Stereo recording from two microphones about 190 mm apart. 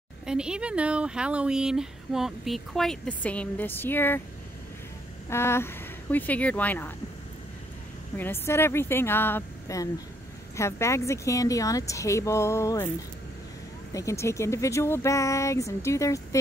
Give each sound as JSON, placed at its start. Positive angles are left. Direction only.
{"t": 0.3, "sound": "speech", "side_deg": -5}
{"t": 5.3, "sound": "speech", "side_deg": 15}
{"t": 8.2, "sound": "speech", "side_deg": 10}
{"t": 13.9, "sound": "speech", "side_deg": 15}